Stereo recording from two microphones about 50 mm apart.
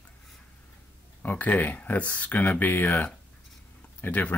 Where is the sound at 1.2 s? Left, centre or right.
Left.